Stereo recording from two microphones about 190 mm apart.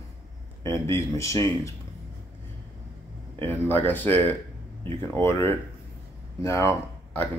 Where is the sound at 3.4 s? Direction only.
10° left (ahead or behind).